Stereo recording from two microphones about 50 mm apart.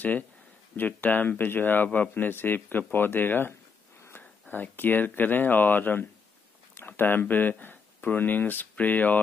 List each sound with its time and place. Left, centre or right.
0.7 s speech: left